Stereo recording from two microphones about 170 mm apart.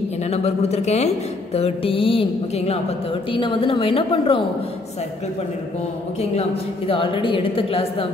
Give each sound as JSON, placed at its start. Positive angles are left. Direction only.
{"t": 0.3, "sound": "speech", "side_deg": 40}
{"t": 6.9, "sound": "speech", "side_deg": 30}